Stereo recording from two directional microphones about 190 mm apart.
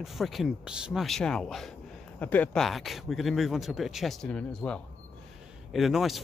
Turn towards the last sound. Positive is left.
turn(degrees=0)  # may be behind; listen again after turning